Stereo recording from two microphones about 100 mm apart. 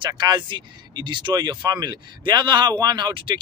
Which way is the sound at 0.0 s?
50° right (ahead or behind).